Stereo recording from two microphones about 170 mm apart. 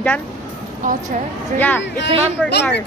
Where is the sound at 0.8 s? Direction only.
50° right (ahead or behind).